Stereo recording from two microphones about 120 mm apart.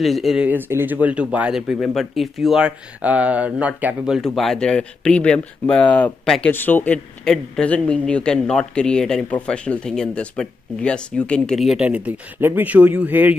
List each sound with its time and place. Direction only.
0.0 s speech: centre (ahead or behind)
0.5 s speech: 20° right (ahead or behind)